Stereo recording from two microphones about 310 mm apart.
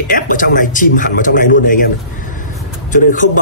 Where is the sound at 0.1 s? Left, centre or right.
Left.